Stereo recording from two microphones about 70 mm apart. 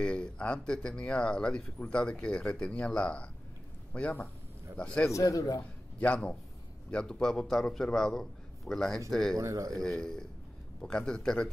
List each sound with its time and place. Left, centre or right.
0.0 s speech: centre
5.1 s a man's voice: left
5.9 s speech: centre
9.4 s speech: right
9.7 s speech: centre